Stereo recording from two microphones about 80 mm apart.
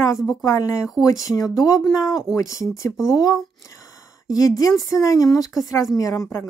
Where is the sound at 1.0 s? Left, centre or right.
Left.